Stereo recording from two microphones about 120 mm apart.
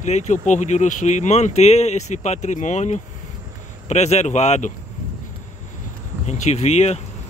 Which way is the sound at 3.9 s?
65° left (ahead or behind).